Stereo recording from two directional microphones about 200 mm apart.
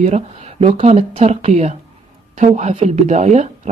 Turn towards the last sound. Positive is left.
turn(degrees=-35)  # may be behind; listen again after turning